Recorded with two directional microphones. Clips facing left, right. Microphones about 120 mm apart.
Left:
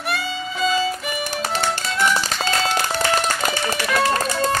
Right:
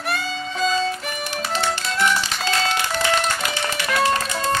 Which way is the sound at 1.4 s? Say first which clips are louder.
Even; 40° left (ahead or behind).